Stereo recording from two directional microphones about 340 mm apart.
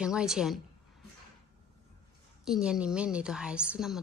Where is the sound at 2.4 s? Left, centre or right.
Centre.